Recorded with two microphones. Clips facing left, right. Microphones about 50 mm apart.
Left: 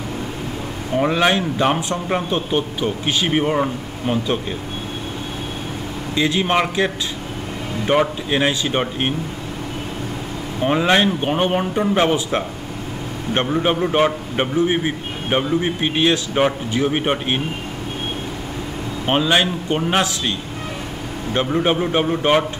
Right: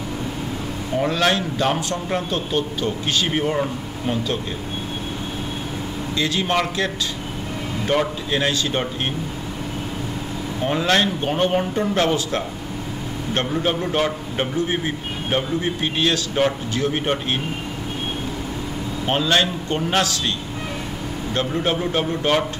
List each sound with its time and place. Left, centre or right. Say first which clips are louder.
0.9 s a man's voice: left 3 dB; centre
6.1 s a man's voice: left 3 dB; centre
10.6 s a man's voice: left 3 dB; centre
19.0 s a man's voice: left 2 dB; centre